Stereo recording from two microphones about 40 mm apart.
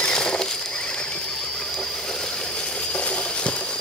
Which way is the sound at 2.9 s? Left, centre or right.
Left.